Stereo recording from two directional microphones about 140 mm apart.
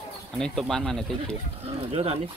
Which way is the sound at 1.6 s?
45° right (ahead or behind).